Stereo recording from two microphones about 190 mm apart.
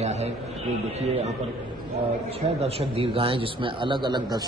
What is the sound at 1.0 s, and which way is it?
Speech, 35° right (ahead or behind).